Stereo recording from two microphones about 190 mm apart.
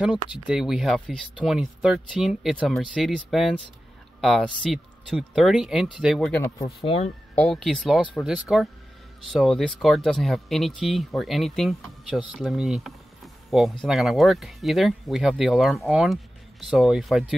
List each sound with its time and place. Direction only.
0.0 s speech: 5° right (ahead or behind)
6.8 s speech: 30° left (ahead or behind)
7.3 s speech: 5° left (ahead or behind)